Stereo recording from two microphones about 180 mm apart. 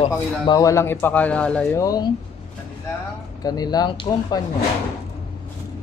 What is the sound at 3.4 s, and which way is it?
Speech, 20° left (ahead or behind).